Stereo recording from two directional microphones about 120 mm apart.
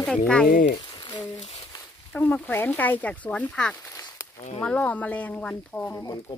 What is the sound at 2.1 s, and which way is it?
Speech, 10° left (ahead or behind).